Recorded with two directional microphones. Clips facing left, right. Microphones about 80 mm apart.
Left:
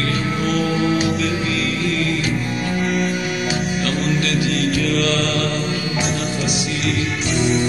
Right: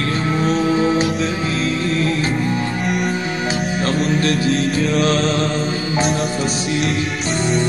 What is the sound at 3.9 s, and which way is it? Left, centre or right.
Music, right.